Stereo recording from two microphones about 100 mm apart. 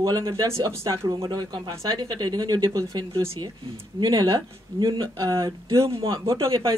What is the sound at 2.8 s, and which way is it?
Speech, 30° right (ahead or behind).